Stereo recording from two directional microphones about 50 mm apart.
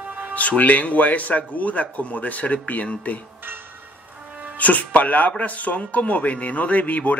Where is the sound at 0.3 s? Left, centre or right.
Left.